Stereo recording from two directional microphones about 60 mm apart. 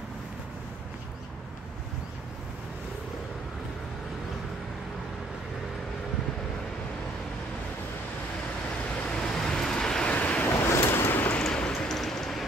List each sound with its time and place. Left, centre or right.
9.0 s vehicle: centre
10.1 s vehicle: left
10.5 s vehicle: left
11.4 s a sound: centre